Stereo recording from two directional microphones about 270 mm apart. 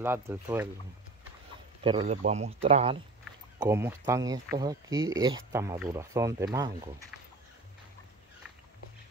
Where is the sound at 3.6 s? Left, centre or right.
Centre.